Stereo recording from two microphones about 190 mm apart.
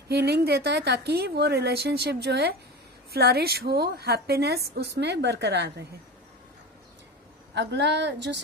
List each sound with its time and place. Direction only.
0.1 s a woman's voice: 60° right (ahead or behind)
7.5 s a woman's voice: 65° right (ahead or behind)